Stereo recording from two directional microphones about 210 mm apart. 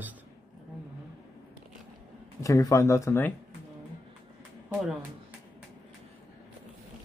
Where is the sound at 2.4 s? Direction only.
15° left (ahead or behind).